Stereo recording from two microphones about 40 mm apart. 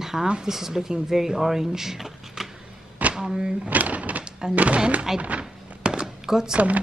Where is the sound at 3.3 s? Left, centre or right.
Right.